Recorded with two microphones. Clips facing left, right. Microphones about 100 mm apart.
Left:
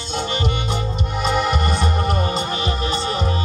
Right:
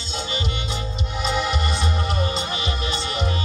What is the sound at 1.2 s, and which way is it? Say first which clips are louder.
Music: left 4 dB; 50° left (ahead or behind).